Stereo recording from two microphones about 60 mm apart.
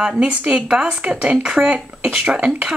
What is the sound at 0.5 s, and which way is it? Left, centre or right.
Speech, centre.